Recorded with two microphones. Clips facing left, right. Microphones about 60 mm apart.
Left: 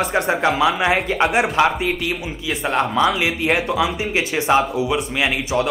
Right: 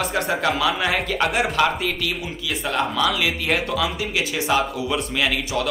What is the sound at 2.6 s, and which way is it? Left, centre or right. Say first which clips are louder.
Speech: left 4 dB; left.